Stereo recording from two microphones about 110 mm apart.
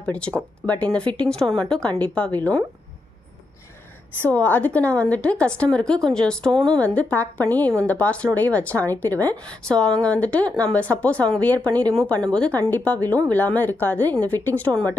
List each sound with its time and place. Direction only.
0.0 s a woman's voice: 10° left (ahead or behind)
4.2 s a woman's voice: 15° left (ahead or behind)